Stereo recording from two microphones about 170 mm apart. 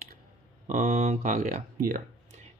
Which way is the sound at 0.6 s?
45° right (ahead or behind).